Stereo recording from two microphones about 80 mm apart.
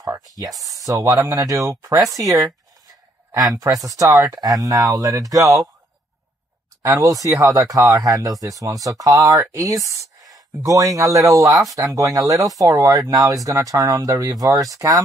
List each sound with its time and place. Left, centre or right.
0.7 s speech: right
1.3 s speech: right
5.3 s speech: right
6.8 s speech: right